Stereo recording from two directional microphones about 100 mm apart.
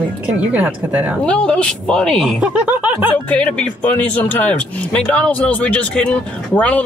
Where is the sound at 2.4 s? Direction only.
15° right (ahead or behind).